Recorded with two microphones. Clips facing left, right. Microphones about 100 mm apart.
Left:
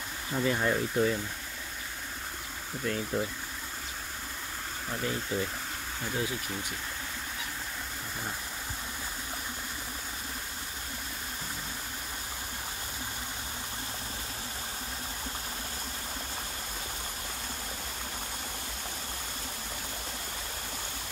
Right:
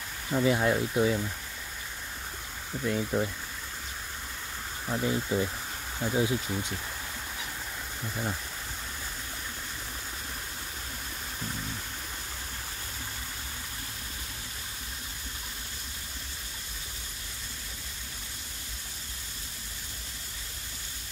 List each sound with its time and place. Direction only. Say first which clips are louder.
0.3 s speech: right 3 dB; 5° right (ahead or behind)
2.8 s speech: right 3 dB; 10° right (ahead or behind)
4.8 s speech: right 5 dB; 15° right (ahead or behind)